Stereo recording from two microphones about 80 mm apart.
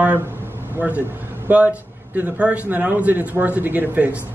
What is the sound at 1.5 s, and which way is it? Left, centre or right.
A man's voice, centre.